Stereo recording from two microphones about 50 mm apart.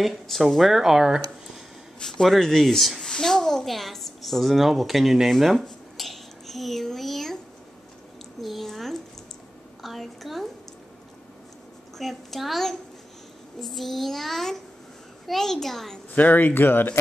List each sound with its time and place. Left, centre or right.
0.0 s a child's voice: centre
2.0 s a child's voice: centre
6.0 s a sound: centre
8.4 s a sound: centre
12.0 s a child's voice: centre
16.2 s speech: left